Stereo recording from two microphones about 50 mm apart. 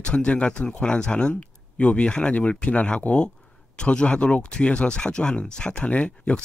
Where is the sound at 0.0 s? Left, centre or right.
Left.